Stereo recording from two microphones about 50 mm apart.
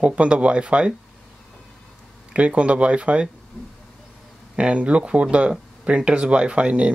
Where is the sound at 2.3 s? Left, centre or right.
Right.